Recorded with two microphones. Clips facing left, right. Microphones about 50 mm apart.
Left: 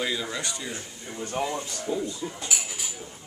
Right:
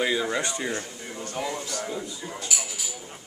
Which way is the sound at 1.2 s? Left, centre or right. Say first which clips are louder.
Left 2 dB; left.